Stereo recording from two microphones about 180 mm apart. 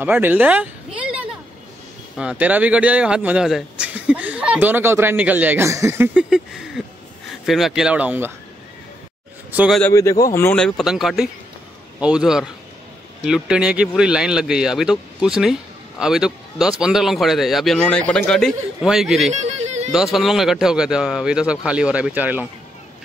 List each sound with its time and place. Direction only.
0.0 s a man's voice: 10° right (ahead or behind)
6.1 s a sound: 5° right (ahead or behind)
7.4 s a man's voice: centre (ahead or behind)
9.5 s speech: 10° right (ahead or behind)
9.8 s a man's voice: 15° left (ahead or behind); by 19.3 s centre (ahead or behind)
19.4 s music: 40° right (ahead or behind)
19.9 s a man's voice: centre (ahead or behind)